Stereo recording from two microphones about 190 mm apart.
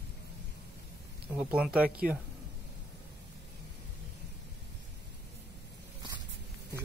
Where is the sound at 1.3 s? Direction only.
5° right (ahead or behind).